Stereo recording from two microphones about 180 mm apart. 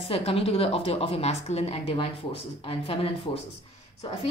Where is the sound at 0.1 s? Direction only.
35° left (ahead or behind).